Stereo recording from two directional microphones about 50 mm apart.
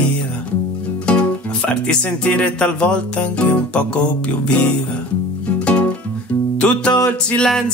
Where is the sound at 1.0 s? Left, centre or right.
Left.